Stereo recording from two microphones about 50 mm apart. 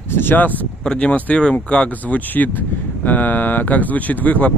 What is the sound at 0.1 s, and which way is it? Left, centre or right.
Speech, left.